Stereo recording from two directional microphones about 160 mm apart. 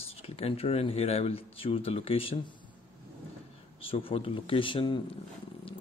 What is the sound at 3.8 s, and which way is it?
Speech, 35° left (ahead or behind).